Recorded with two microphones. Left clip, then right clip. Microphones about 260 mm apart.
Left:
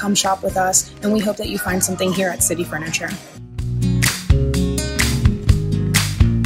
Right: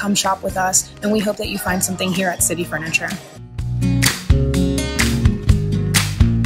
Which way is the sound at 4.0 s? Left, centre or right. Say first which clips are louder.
Right 1 dB; centre.